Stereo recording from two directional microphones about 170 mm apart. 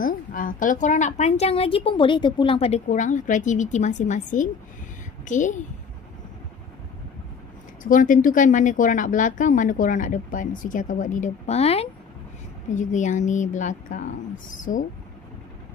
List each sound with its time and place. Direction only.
0.0 s a woman's voice: 55° left (ahead or behind)
7.8 s a woman's voice: 50° left (ahead or behind)